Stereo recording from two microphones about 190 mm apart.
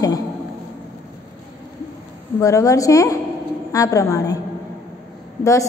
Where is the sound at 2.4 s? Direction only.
15° left (ahead or behind).